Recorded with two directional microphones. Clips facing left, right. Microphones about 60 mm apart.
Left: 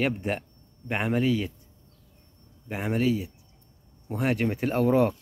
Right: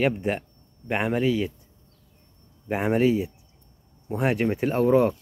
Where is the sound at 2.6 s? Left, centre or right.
Right.